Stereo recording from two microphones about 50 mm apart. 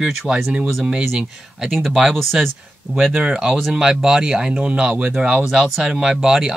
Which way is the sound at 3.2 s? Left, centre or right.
Centre.